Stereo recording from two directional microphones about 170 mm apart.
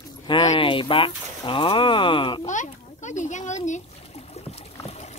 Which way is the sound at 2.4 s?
45° left (ahead or behind).